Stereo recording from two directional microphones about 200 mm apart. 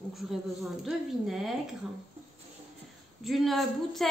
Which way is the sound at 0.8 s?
Centre (ahead or behind).